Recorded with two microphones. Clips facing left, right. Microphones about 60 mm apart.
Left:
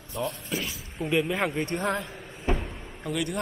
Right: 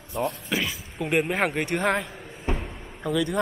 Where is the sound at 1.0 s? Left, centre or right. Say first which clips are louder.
Right 2 dB; right.